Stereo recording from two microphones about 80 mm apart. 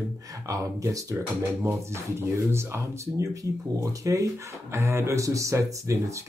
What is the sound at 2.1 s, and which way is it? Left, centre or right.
Speech, right.